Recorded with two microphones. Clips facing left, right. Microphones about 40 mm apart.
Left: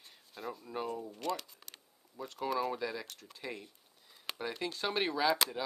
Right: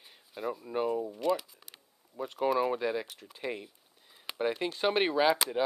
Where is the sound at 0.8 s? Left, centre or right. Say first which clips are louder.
Right 10 dB; right.